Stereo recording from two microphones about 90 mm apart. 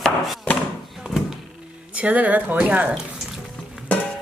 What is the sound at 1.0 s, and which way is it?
Music, 5° right (ahead or behind).